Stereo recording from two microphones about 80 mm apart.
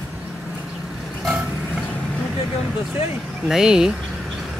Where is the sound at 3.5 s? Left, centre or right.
Centre.